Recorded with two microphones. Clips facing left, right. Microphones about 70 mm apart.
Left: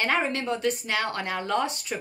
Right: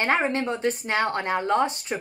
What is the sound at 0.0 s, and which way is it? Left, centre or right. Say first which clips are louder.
Speech: right 3 dB; right.